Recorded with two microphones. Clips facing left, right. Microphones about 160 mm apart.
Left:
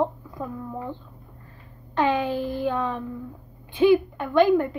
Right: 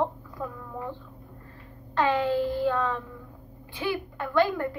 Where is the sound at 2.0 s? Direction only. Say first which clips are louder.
Left 1 dB; 15° left (ahead or behind).